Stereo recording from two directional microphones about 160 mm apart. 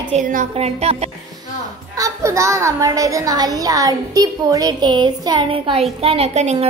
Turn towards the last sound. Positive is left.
turn(degrees=-45)  # may be behind; listen again after turning